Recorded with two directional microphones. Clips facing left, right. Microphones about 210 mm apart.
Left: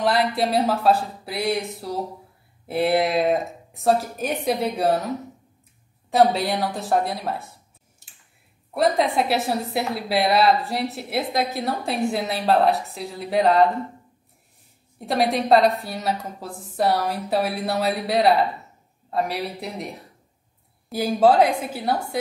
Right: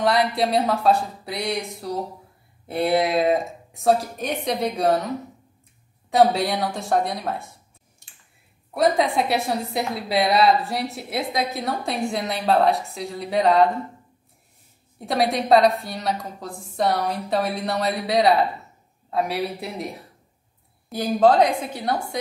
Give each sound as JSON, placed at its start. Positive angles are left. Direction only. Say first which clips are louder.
{"t": 0.0, "sound": "a woman's voice", "louder": "right 1 dB", "side_deg": 0}
{"t": 8.7, "sound": "a woman's voice", "louder": "even", "side_deg": 0}
{"t": 15.0, "sound": "a woman's voice", "louder": "even", "side_deg": 0}
{"t": 20.9, "sound": "a woman's voice", "louder": "even", "side_deg": 5}